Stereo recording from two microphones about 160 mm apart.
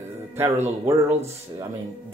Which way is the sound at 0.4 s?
15° right (ahead or behind).